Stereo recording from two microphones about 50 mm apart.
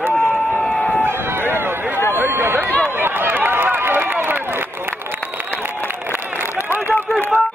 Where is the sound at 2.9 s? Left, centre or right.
Right.